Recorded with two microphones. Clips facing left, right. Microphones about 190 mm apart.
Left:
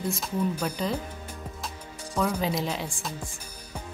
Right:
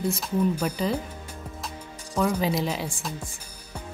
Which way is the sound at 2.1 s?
5° right (ahead or behind).